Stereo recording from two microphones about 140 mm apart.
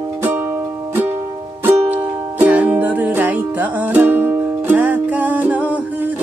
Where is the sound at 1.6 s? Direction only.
15° right (ahead or behind).